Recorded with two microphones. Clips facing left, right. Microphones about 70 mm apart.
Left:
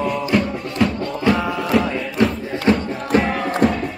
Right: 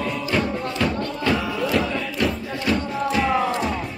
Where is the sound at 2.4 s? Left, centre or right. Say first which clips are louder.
Left 5 dB; left.